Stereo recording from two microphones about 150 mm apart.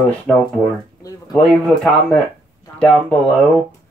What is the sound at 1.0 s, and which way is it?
Speech, 25° left (ahead or behind).